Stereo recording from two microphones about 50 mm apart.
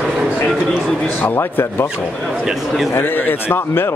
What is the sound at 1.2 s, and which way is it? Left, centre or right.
Speech, left.